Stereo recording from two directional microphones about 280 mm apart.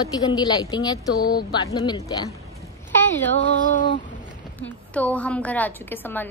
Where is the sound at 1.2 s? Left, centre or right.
Left.